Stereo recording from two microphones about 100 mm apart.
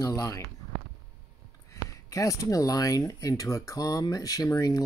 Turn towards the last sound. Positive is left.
turn(degrees=35)  # may be behind; listen again after turning